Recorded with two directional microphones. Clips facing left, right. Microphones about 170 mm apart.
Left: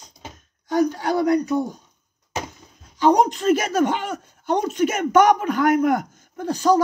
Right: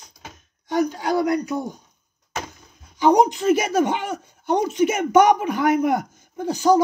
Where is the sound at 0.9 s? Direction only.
15° right (ahead or behind).